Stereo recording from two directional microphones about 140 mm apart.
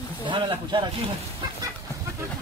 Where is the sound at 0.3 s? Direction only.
35° right (ahead or behind).